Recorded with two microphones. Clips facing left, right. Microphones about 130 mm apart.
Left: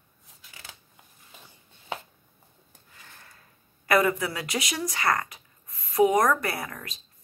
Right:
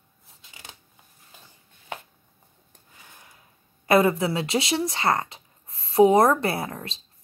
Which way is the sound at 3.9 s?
25° right (ahead or behind).